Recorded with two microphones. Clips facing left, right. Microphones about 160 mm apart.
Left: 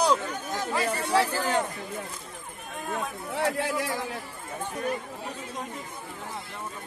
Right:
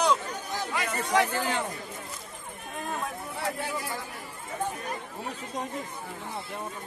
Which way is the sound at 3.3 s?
85° left.